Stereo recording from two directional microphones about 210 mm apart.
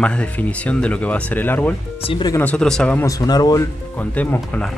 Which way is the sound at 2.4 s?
5° left (ahead or behind).